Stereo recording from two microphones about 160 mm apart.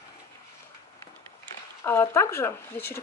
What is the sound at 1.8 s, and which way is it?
Speech, 15° left (ahead or behind).